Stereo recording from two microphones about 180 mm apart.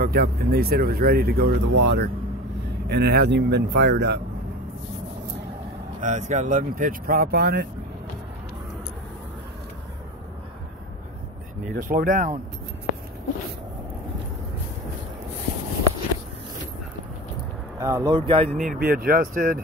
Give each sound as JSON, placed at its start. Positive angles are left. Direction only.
{"t": 0.0, "sound": "speech", "side_deg": -60}
{"t": 5.9, "sound": "speech", "side_deg": -45}
{"t": 11.7, "sound": "speech", "side_deg": -50}
{"t": 17.7, "sound": "speech", "side_deg": -15}
{"t": 18.6, "sound": "speech", "side_deg": -50}